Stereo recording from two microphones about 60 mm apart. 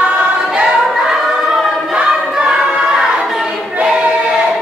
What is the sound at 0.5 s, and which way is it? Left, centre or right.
Choir, centre.